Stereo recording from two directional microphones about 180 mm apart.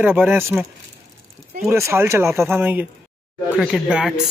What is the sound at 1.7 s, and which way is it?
A man's voice, 15° right (ahead or behind).